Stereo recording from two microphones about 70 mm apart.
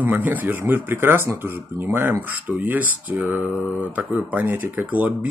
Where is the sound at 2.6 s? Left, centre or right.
Right.